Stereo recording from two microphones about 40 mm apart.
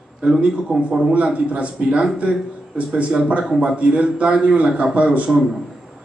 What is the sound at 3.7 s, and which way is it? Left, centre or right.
A man's voice, right.